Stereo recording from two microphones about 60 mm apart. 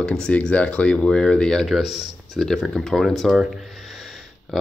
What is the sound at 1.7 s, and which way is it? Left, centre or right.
Speech, centre.